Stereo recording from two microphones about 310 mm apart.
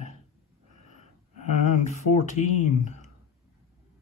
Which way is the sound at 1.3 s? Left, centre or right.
Left.